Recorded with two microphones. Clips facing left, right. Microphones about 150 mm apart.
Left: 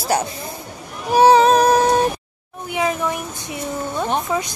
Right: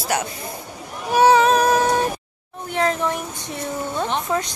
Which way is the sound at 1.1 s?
35° left (ahead or behind).